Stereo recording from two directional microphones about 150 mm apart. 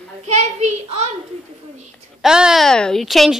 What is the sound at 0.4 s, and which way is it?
Speech, 50° right (ahead or behind).